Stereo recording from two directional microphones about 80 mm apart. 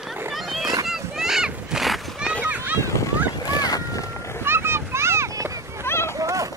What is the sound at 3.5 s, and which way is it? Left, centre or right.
Boat, left.